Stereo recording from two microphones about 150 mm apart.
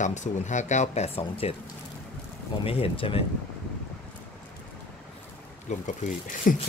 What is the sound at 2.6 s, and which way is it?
Speech, 40° left (ahead or behind).